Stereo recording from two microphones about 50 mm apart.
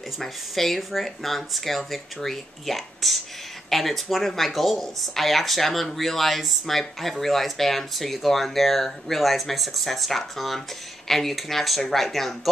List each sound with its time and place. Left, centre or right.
0.2 s speech: centre